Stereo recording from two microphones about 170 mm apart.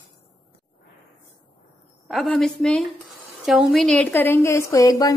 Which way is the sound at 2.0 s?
Centre (ahead or behind).